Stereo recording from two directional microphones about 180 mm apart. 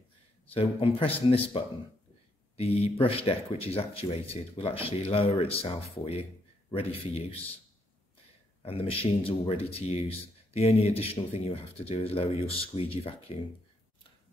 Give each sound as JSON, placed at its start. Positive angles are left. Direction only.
{"t": 0.5, "sound": "a man's voice", "side_deg": 30}
{"t": 8.6, "sound": "a man's voice", "side_deg": 30}